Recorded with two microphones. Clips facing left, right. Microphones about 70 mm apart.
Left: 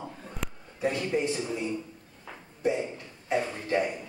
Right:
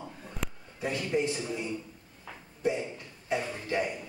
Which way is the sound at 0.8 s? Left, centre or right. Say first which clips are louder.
Left 2 dB; left.